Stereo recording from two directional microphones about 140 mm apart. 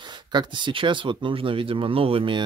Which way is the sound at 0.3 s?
35° right (ahead or behind).